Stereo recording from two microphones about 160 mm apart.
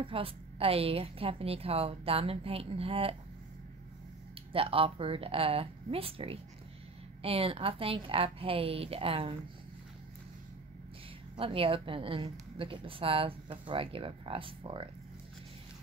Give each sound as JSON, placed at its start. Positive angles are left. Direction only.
{"t": 0.0, "sound": "a woman's voice", "side_deg": -35}
{"t": 4.5, "sound": "a woman's voice", "side_deg": -35}
{"t": 11.3, "sound": "a woman's voice", "side_deg": -35}